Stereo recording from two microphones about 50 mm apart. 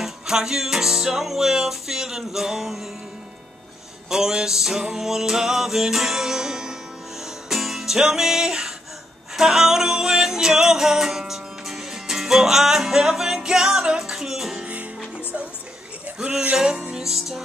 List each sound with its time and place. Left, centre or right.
0.0 s music: centre
4.1 s music: centre
16.5 s music: centre